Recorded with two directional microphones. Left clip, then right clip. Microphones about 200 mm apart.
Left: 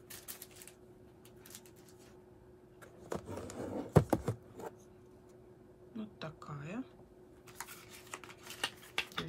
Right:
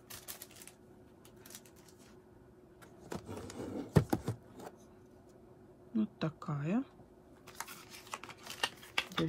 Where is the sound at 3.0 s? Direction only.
5° left (ahead or behind).